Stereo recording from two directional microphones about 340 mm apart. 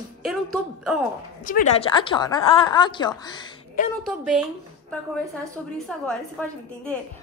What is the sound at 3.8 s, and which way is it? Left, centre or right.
Speech, left.